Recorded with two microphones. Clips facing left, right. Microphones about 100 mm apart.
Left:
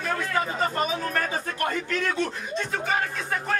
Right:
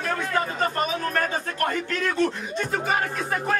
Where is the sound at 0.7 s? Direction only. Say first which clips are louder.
Right 1 dB; centre (ahead or behind).